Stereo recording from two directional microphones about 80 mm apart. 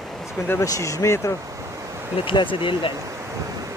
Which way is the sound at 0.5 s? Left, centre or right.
Left.